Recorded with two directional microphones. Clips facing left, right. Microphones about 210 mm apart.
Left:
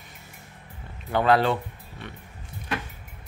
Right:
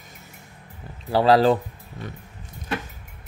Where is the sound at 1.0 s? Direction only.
35° right (ahead or behind).